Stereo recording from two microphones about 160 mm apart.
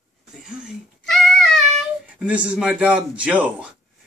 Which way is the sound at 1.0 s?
5° left (ahead or behind).